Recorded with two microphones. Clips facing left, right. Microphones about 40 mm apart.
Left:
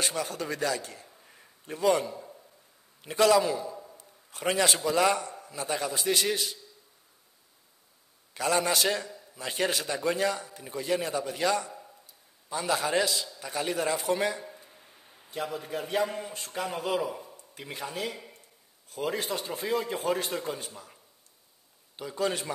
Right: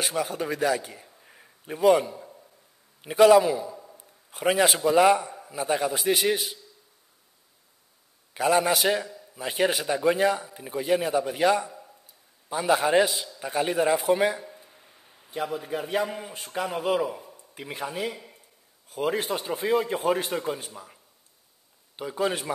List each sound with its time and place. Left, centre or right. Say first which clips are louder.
0.0 s a man's voice: right 3 dB; centre
3.0 s a man's voice: right 6 dB; centre
3.7 s a sound: even; centre
4.0 s a sound: right 6 dB; centre
4.9 s a man's voice: right 6 dB; centre
8.3 s a man's voice: right 5 dB; centre
9.0 s a sound: right 3 dB; centre
9.4 s a man's voice: right 4 dB; right
14.4 s a man's voice: right 1 dB; centre
21.9 s a man's voice: right 3 dB; centre